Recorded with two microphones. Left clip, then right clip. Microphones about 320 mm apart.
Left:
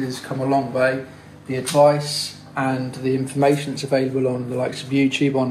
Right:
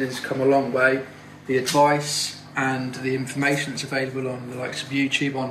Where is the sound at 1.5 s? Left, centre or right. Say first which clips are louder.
Left 3 dB; centre.